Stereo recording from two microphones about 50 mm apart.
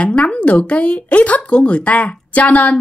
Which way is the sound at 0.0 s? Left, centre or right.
Left.